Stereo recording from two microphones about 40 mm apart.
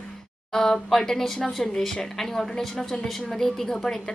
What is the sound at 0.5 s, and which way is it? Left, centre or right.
A woman's voice, centre.